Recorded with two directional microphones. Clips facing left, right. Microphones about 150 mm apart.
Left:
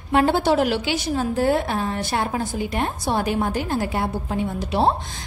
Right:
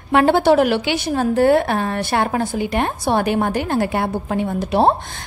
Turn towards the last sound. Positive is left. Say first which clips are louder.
# right 4 dB
turn(degrees=-55)  # may be behind; listen again after turning